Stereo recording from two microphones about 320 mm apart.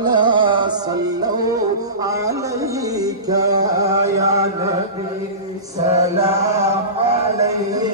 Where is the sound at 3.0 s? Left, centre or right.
Centre.